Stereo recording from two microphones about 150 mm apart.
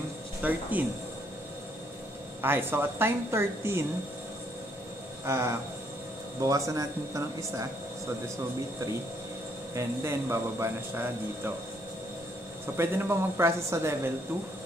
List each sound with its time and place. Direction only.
0.4 s a man's voice: 10° right (ahead or behind)
2.4 s a man's voice: 15° right (ahead or behind)
5.2 s a man's voice: 15° right (ahead or behind)
9.8 s a man's voice: 20° right (ahead or behind)
12.7 s a man's voice: 15° right (ahead or behind)